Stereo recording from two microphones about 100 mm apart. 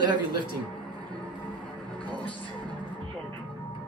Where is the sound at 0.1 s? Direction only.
50° right (ahead or behind).